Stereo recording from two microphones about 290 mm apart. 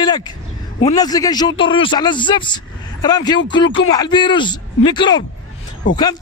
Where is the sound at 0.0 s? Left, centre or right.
Centre.